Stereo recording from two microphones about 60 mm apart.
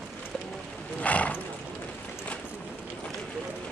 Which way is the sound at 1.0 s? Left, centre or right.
Left.